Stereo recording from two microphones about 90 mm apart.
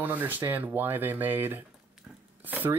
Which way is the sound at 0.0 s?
20° right (ahead or behind).